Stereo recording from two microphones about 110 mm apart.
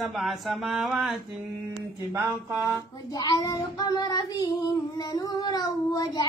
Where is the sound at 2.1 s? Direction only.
25° right (ahead or behind).